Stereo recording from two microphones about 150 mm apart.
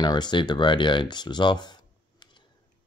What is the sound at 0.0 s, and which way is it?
Speech, 30° left (ahead or behind).